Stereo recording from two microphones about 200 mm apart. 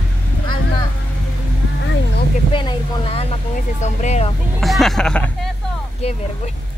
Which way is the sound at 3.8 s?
35° left (ahead or behind).